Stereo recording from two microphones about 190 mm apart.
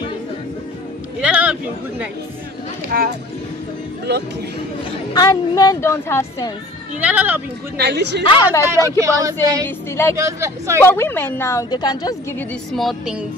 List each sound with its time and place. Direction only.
1.2 s speech: 5° right (ahead or behind)
2.9 s speech: 50° right (ahead or behind)
4.1 s a woman's voice: 60° right (ahead or behind)
5.1 s a woman's voice: 20° left (ahead or behind)
7.0 s speech: 10° right (ahead or behind)
7.7 s a woman's voice: 60° right (ahead or behind)
8.2 s a woman's voice: 25° left (ahead or behind)
8.6 s speech: 15° right (ahead or behind)
10.8 s a woman's voice: 10° left (ahead or behind)
12.4 s speech: centre (ahead or behind)